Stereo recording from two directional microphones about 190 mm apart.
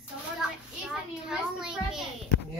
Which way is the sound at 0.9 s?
5° right (ahead or behind).